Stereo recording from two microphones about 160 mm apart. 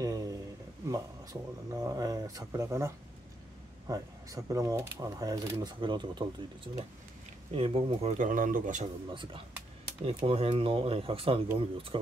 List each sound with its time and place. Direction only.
0.0 s a sound: 20° right (ahead or behind)
0.8 s speech: 20° right (ahead or behind); by 8.1 s 35° right (ahead or behind)
8.2 s speech: 55° right (ahead or behind)
9.1 s speech: 30° right (ahead or behind)